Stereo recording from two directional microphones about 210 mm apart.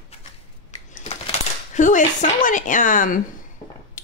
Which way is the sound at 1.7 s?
35° left (ahead or behind).